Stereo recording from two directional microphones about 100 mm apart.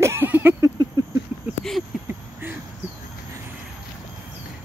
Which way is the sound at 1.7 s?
5° left (ahead or behind).